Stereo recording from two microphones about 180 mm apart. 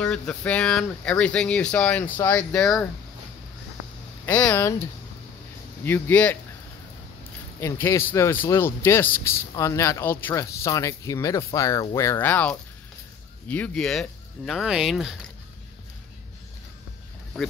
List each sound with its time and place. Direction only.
0.0 s speech: 5° left (ahead or behind)
2.6 s speech: centre (ahead or behind)
4.3 s speech: 10° left (ahead or behind)
5.9 s speech: 10° left (ahead or behind)
7.6 s speech: 15° left (ahead or behind); by 15.1 s centre (ahead or behind)